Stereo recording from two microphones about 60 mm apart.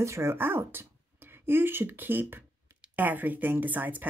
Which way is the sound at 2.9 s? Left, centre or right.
Right.